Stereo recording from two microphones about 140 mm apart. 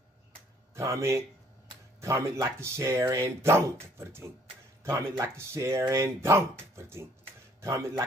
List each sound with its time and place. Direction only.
0.7 s speech: 20° right (ahead or behind)